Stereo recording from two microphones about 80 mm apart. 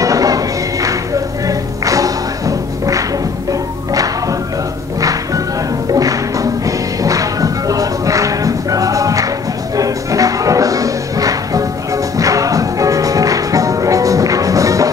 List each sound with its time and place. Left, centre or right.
0.0 s music: right
5.9 s music: right